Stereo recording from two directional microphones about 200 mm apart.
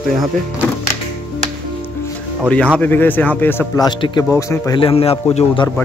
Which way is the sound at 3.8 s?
20° left (ahead or behind).